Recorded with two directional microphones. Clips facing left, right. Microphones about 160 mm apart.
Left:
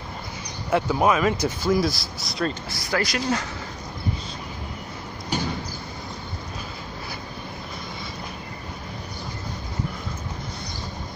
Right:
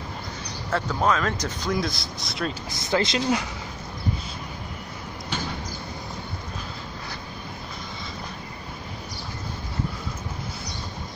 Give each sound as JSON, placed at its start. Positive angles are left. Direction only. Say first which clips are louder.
{"t": 0.7, "sound": "speech", "louder": "left 3 dB", "side_deg": 10}
{"t": 2.7, "sound": "speech", "louder": "right 2 dB", "side_deg": -20}